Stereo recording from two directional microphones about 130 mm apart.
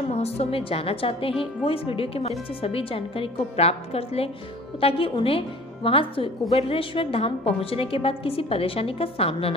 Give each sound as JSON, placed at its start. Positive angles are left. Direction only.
{"t": 0.1, "sound": "a woman's voice", "side_deg": 55}